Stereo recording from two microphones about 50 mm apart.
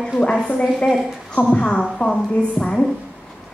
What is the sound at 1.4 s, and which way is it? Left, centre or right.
A woman's voice, centre.